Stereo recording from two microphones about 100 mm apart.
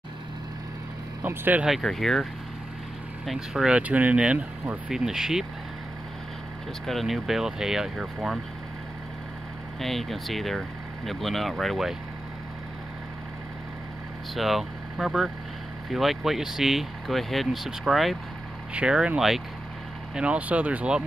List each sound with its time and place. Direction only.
1.2 s speech: 20° right (ahead or behind)
1.6 s speech: centre (ahead or behind)
3.3 s speech: 5° right (ahead or behind)
6.9 s speech: centre (ahead or behind)
9.8 s speech: centre (ahead or behind)
14.3 s speech: centre (ahead or behind)